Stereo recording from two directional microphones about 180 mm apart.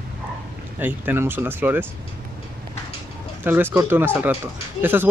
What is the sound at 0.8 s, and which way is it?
Speech, 10° right (ahead or behind).